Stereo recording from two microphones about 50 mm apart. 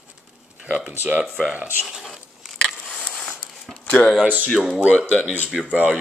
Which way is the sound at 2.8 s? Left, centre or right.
Left.